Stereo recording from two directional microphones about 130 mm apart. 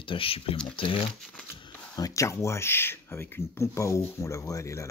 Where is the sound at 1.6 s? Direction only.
30° left (ahead or behind).